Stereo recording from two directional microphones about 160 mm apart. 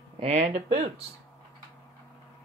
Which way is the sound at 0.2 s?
40° right (ahead or behind).